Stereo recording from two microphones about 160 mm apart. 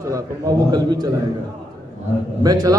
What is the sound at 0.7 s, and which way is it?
Speech, 25° right (ahead or behind).